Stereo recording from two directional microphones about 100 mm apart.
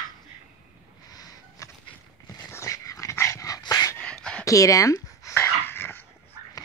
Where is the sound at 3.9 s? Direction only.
10° left (ahead or behind).